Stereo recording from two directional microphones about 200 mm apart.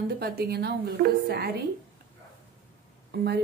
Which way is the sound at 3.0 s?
55° right (ahead or behind).